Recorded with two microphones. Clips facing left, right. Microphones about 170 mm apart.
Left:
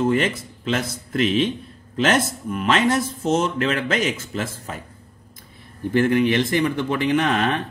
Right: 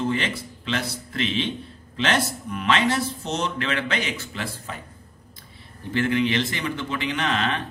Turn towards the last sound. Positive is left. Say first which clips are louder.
# left 5 dB
turn(degrees=50)  # may be behind; listen again after turning